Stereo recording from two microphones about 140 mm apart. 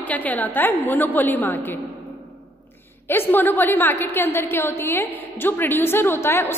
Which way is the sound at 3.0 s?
15° left (ahead or behind).